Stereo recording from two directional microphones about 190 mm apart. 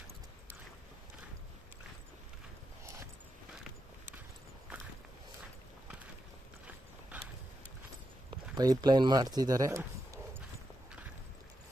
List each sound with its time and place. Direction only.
8.5 s speech: 20° right (ahead or behind)